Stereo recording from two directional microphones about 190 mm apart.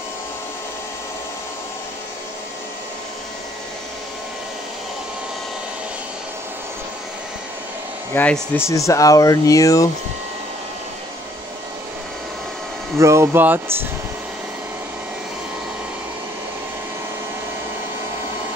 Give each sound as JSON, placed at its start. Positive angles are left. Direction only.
{"t": 8.1, "sound": "speech", "side_deg": 10}
{"t": 12.9, "sound": "speech", "side_deg": -15}